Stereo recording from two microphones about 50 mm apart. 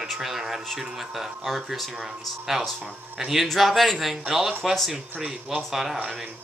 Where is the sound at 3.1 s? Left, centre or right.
Centre.